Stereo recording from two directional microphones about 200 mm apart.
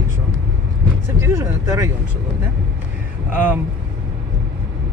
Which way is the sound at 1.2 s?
15° right (ahead or behind).